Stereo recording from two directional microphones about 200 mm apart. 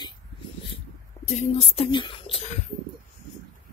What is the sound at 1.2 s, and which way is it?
Speech, 35° left (ahead or behind).